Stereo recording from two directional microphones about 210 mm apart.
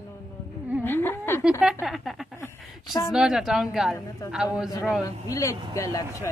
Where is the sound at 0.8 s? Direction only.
10° left (ahead or behind).